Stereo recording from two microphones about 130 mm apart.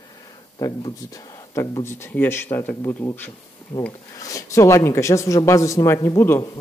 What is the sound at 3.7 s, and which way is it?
Speech, 35° left (ahead or behind).